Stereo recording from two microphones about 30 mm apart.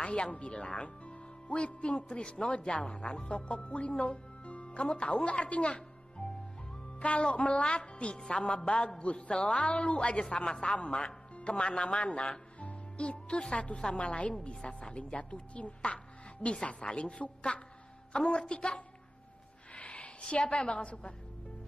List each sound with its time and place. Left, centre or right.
0.0 s a woman's voice: left
0.8 s speech: left
7.0 s music: left
7.3 s speech: left
12.5 s music: left
13.4 s a woman's voice: left
15.1 s speech: left
16.6 s a woman's voice: left
19.7 s a woman's voice: left